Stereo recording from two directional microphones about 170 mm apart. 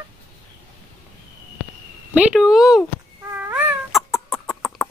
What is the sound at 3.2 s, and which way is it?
Cat, 10° right (ahead or behind).